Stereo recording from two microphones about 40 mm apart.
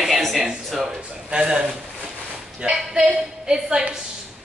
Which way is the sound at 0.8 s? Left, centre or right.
Right.